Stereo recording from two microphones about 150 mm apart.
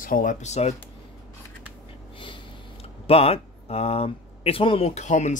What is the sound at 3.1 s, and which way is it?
Speech, 40° left (ahead or behind).